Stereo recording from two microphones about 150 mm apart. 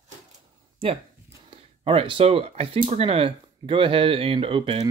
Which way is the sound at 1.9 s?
40° right (ahead or behind).